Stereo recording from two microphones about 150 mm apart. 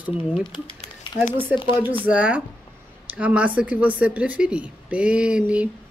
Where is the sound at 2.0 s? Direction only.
10° right (ahead or behind).